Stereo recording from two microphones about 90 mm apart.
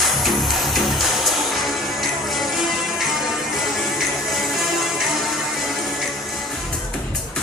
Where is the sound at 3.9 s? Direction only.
Centre (ahead or behind).